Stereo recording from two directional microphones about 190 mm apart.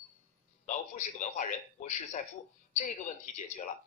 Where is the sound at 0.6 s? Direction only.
40° left (ahead or behind).